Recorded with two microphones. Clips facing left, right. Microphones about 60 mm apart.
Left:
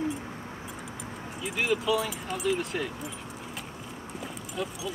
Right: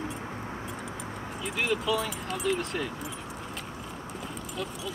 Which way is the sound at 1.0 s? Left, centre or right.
Centre.